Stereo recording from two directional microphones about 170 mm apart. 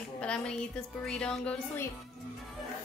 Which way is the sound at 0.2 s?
5° left (ahead or behind).